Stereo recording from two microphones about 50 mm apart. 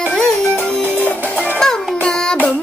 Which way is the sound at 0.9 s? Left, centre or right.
Left.